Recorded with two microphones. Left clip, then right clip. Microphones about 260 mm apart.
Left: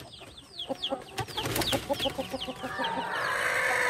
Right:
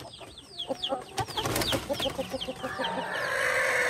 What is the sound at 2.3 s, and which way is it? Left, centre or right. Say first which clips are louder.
Chicken: right 1 dB; centre.